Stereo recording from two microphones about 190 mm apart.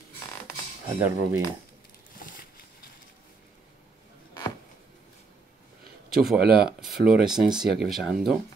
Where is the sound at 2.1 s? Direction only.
45° left (ahead or behind).